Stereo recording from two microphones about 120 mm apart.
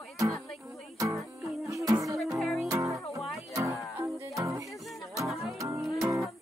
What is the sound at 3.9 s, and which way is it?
Music, 20° right (ahead or behind).